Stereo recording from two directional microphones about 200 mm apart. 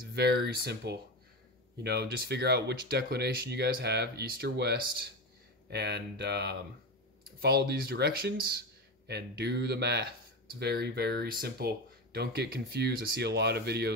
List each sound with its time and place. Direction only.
0.1 s speech: 55° right (ahead or behind)